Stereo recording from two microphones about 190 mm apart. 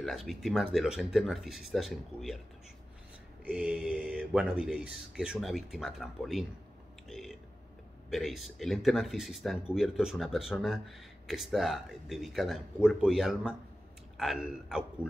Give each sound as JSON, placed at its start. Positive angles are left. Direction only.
{"t": 0.0, "sound": "speech", "side_deg": 0}
{"t": 3.4, "sound": "speech", "side_deg": -5}
{"t": 7.1, "sound": "burping", "side_deg": 0}
{"t": 8.1, "sound": "speech", "side_deg": 0}